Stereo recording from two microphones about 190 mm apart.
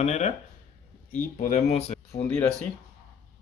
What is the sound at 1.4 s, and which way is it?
Speech, 40° left (ahead or behind).